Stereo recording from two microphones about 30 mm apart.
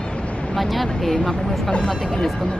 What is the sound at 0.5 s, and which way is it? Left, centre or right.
Speech, centre.